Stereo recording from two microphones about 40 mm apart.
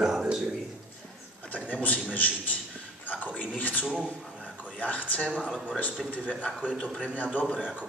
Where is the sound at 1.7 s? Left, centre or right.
Left.